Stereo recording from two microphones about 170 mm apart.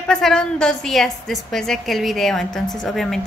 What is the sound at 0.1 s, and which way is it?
A woman's voice, 5° left (ahead or behind).